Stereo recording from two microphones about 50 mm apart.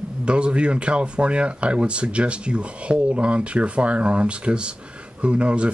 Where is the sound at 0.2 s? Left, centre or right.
Right.